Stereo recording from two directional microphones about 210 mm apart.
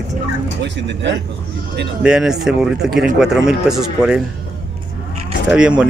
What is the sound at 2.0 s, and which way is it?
Speech, 5° right (ahead or behind).